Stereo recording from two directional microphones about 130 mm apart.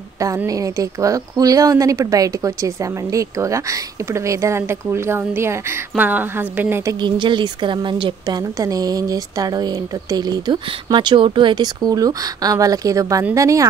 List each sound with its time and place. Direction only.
0.5 s speech: 25° right (ahead or behind)
6.9 s a woman's voice: 35° right (ahead or behind)